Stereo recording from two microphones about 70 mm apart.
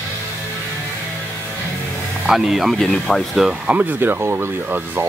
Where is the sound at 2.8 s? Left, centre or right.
Centre.